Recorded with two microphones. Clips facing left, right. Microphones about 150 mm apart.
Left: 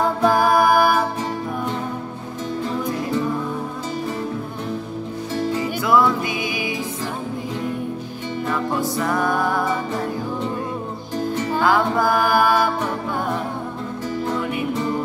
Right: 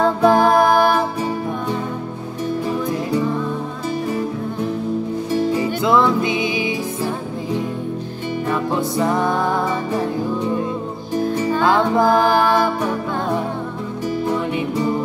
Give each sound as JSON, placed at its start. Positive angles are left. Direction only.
{"t": 0.2, "sound": "music", "side_deg": -20}
{"t": 0.7, "sound": "music", "side_deg": 10}
{"t": 5.3, "sound": "music", "side_deg": -15}
{"t": 8.5, "sound": "music", "side_deg": -20}
{"t": 11.1, "sound": "music", "side_deg": -10}
{"t": 11.6, "sound": "music", "side_deg": -25}
{"t": 14.2, "sound": "music", "side_deg": -15}